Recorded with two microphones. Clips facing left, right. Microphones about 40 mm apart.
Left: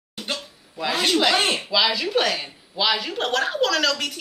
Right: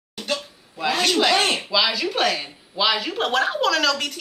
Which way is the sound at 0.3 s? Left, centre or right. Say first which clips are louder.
Right 4 dB; centre.